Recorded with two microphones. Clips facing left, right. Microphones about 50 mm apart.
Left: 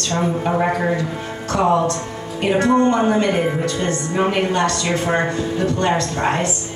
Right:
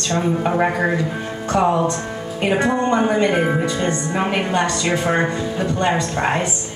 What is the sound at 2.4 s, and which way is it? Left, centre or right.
A woman's voice, centre.